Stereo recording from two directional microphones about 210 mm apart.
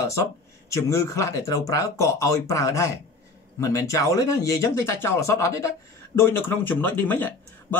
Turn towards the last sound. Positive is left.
turn(degrees=10)  # may be behind; listen again after turning